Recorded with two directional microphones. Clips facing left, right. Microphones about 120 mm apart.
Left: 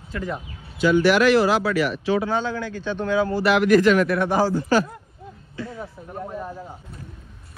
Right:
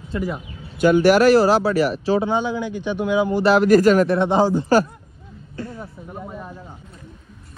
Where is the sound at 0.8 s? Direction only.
50° right (ahead or behind).